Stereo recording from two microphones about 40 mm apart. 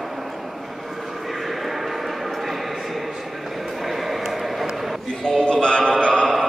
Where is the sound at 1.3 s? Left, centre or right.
Centre.